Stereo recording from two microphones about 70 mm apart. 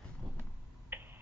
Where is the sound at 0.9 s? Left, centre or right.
Right.